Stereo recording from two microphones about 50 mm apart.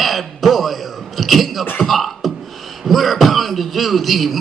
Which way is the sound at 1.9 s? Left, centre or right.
Centre.